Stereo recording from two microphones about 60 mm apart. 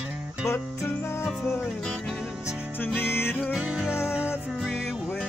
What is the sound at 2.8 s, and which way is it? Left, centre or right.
Music, left.